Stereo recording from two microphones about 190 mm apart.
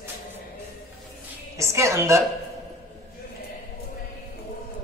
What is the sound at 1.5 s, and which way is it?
Speech, 15° right (ahead or behind).